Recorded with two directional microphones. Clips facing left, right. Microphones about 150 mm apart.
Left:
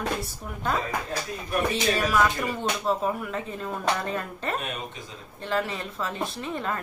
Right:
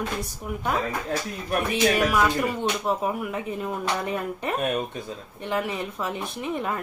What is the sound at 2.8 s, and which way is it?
Speech, 15° right (ahead or behind).